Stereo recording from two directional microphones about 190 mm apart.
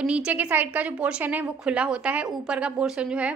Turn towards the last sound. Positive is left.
turn(degrees=-5)  # may be behind; listen again after turning